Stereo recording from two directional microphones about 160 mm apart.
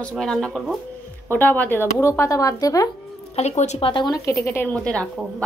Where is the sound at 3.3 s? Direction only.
45° left (ahead or behind).